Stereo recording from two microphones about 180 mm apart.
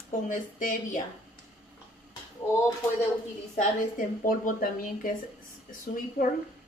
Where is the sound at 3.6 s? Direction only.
50° left (ahead or behind).